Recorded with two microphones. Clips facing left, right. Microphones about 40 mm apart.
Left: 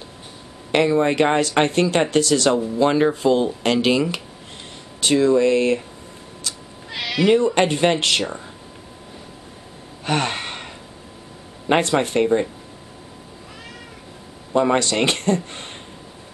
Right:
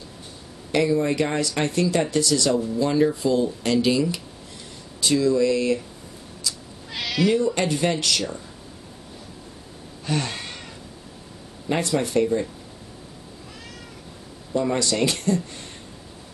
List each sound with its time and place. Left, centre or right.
0.7 s speech: left
6.5 s cat: left
6.9 s cat: centre
7.2 s speech: left
10.0 s gasp: left
11.7 s speech: left
14.5 s speech: left